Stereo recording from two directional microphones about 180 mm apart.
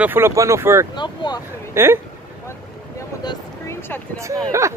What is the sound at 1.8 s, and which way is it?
Speech, 15° right (ahead or behind).